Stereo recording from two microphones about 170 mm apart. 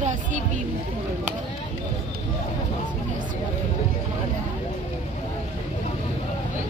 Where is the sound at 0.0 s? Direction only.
45° right (ahead or behind).